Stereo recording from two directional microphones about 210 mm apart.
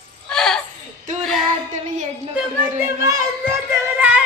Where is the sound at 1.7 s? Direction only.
35° right (ahead or behind).